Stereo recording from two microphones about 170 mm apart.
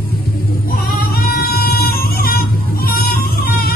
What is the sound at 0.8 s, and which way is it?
Music, 60° left (ahead or behind).